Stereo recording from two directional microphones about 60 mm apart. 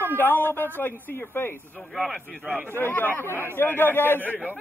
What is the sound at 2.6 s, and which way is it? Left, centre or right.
A man's voice, left.